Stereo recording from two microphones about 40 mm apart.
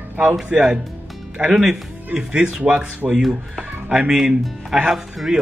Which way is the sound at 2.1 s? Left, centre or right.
Right.